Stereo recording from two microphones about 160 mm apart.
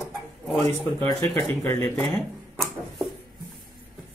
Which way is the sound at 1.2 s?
10° left (ahead or behind).